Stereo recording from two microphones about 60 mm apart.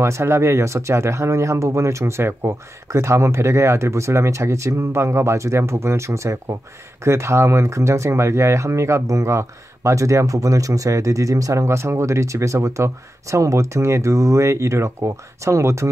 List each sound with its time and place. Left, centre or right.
0.0 s speech: right